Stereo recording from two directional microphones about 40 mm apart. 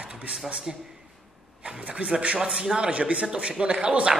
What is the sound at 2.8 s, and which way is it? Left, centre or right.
A man's voice, right.